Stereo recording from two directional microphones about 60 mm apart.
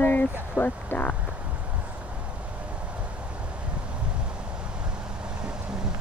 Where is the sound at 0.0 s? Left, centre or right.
Left.